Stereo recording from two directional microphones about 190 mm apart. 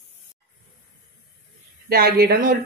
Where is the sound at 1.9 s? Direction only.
55° right (ahead or behind).